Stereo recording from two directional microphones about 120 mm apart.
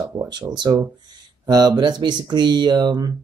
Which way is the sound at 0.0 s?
35° right (ahead or behind).